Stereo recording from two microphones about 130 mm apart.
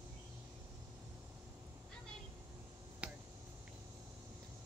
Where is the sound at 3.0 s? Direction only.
10° right (ahead or behind).